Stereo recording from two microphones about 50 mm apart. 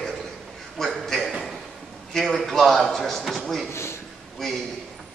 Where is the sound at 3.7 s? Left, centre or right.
Left.